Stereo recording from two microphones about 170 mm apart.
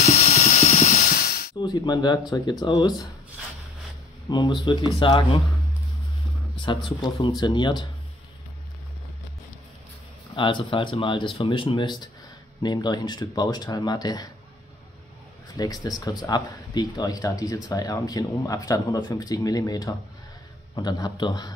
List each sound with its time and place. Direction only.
0.0 s music: 40° left (ahead or behind); by 1.5 s 60° left (ahead or behind)
1.6 s speech: 25° left (ahead or behind)
4.3 s speech: 25° left (ahead or behind)
6.6 s speech: 25° left (ahead or behind)
10.3 s speech: 30° left (ahead or behind)
15.5 s speech: 20° left (ahead or behind)